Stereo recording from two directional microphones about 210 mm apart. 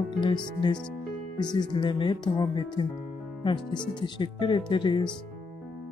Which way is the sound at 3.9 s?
20° left (ahead or behind).